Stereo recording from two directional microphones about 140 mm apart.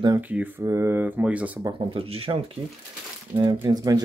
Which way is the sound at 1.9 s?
40° right (ahead or behind).